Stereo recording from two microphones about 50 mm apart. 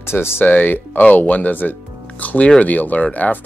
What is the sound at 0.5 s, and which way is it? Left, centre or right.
Speech, left.